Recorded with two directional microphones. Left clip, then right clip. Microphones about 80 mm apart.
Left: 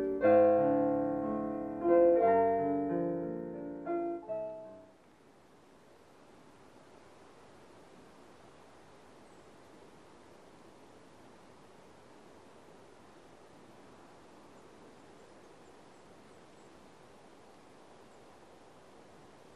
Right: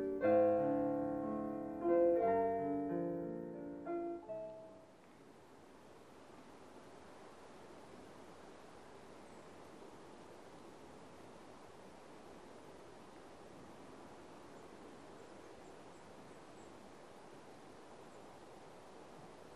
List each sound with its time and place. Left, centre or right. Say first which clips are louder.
0.0 s music: left 7 dB; right